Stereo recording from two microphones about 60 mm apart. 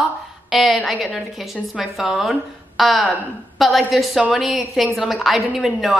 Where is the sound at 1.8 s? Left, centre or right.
Centre.